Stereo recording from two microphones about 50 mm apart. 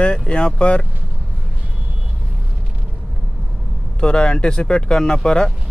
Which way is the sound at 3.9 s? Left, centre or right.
Centre.